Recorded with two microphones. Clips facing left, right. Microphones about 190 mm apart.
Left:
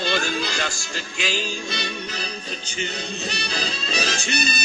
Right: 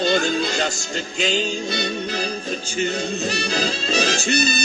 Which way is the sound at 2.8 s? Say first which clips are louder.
Right 7 dB; 45° right (ahead or behind).